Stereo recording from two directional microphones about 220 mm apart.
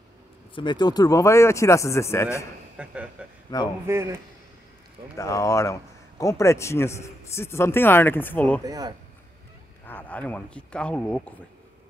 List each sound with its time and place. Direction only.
0.6 s a man's voice: 20° left (ahead or behind)
2.8 s speech: 5° right (ahead or behind)
3.5 s a man's voice: 15° left (ahead or behind)
3.8 s a man's voice: 10° right (ahead or behind)
5.1 s a man's voice: 15° left (ahead or behind)
8.6 s a man's voice: 15° right (ahead or behind)
9.8 s speech: 10° left (ahead or behind)